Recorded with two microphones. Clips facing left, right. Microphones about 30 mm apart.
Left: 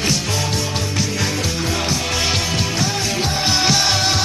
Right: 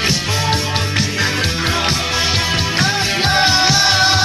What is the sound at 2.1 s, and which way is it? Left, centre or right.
Music, centre.